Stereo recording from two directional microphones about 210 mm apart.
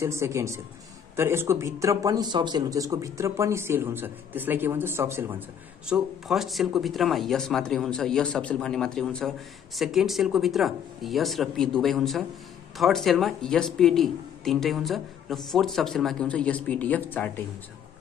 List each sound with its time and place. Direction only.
0.0 s speech: 15° right (ahead or behind); by 17.3 s 5° left (ahead or behind)